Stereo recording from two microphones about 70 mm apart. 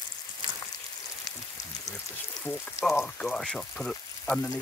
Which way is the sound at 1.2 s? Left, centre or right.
Left.